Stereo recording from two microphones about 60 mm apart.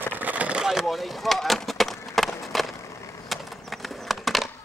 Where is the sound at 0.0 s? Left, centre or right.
Right.